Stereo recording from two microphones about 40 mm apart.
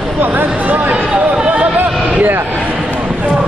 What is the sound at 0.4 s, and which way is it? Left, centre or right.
Speech, right.